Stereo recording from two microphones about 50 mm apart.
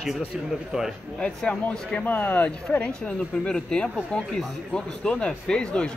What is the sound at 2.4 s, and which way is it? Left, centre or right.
Speech, left.